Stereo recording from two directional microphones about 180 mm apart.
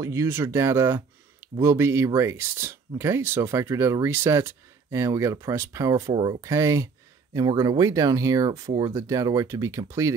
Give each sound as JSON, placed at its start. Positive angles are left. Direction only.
{"t": 0.0, "sound": "speech", "side_deg": -15}